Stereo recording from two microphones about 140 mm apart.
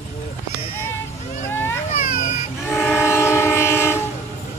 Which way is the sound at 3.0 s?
20° left (ahead or behind).